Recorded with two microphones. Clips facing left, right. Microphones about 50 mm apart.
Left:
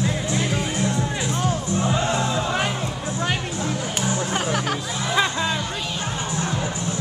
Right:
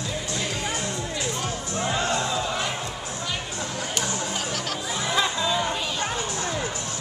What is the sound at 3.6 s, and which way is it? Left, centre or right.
Music, centre.